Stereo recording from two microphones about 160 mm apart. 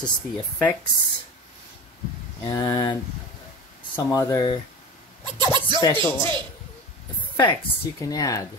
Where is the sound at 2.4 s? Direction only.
25° left (ahead or behind).